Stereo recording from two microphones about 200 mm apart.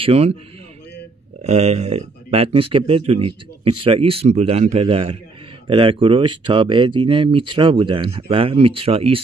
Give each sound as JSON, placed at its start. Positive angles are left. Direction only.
{"t": 0.0, "sound": "speech", "side_deg": -30}
{"t": 1.4, "sound": "speech", "side_deg": -35}